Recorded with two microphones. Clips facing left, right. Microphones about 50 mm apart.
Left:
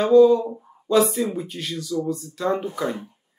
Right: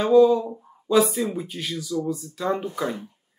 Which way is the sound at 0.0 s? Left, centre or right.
Centre.